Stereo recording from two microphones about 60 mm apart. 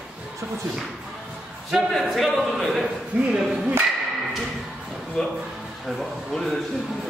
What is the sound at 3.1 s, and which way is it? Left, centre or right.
Speech, right.